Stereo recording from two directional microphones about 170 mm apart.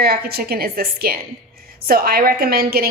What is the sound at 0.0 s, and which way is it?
A woman's voice, 65° right (ahead or behind).